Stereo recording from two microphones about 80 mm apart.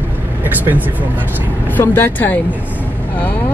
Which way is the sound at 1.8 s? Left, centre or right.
Left.